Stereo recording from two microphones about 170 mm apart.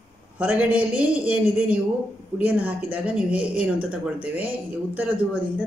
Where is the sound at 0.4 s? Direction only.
10° right (ahead or behind).